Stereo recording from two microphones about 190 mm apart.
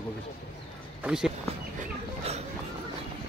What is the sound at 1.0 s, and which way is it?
Speech, 5° right (ahead or behind).